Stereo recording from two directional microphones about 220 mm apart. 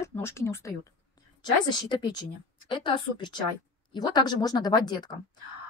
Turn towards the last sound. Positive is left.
turn(degrees=20)  # may be behind; listen again after turning